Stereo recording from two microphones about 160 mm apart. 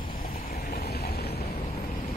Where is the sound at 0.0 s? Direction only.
65° left (ahead or behind); by 1.4 s 85° left.